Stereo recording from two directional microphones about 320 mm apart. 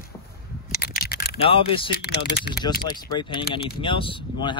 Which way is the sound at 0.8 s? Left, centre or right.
Left.